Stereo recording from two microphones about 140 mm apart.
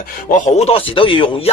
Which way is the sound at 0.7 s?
40° left (ahead or behind).